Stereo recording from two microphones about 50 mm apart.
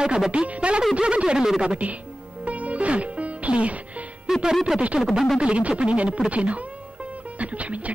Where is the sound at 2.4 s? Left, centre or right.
Right.